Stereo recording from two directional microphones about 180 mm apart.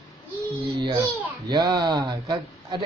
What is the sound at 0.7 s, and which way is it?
A child's voice, 20° right (ahead or behind).